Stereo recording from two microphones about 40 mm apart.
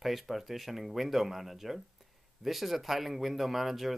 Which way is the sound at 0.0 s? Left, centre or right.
Centre.